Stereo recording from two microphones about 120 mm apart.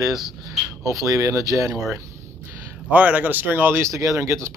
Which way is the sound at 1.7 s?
Centre (ahead or behind).